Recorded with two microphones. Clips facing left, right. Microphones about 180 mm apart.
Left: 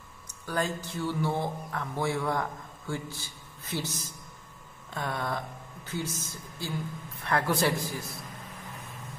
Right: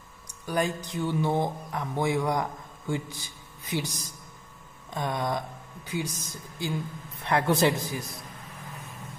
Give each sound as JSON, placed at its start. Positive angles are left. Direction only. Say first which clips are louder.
{"t": 0.3, "sound": "a man's voice", "louder": "right 3 dB", "side_deg": -15}